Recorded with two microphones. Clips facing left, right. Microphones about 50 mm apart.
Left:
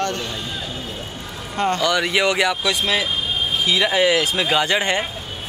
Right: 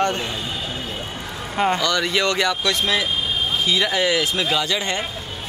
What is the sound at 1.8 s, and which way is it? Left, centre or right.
Speech, centre.